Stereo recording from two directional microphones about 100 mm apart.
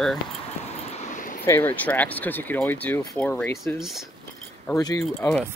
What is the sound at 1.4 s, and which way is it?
Speech, 20° left (ahead or behind).